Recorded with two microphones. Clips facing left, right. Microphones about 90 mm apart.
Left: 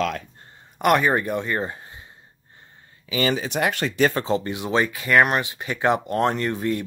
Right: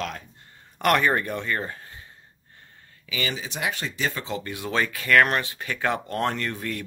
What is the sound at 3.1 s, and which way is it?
Speech, 45° left (ahead or behind).